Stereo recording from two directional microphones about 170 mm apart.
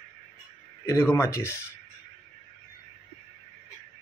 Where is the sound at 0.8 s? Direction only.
15° left (ahead or behind).